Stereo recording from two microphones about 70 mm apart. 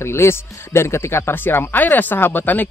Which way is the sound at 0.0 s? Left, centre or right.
Left.